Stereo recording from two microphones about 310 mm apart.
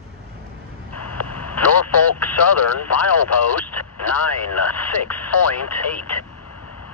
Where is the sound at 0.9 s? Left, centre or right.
Left.